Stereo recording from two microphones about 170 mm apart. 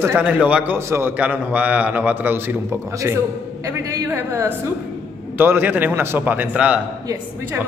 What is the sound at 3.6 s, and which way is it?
A man's voice, 15° right (ahead or behind).